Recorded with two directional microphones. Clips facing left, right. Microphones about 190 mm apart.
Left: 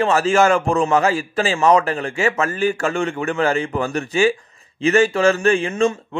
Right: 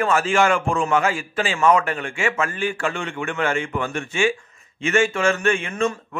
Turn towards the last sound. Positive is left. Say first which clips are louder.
# left 4 dB
turn(degrees=30)  # may be behind; listen again after turning